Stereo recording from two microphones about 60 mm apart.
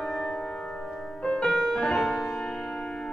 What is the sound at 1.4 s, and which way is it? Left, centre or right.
Music, centre.